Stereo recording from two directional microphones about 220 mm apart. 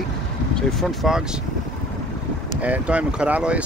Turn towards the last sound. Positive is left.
turn(degrees=-5)  # may be behind; listen again after turning